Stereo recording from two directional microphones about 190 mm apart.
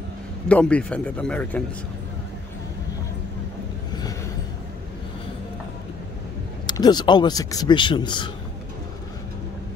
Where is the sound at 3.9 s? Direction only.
20° left (ahead or behind).